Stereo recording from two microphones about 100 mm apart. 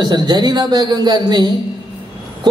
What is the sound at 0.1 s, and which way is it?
A man's voice, 45° right (ahead or behind).